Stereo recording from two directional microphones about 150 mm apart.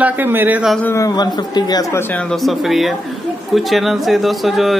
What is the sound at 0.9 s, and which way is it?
Speech, 25° left (ahead or behind).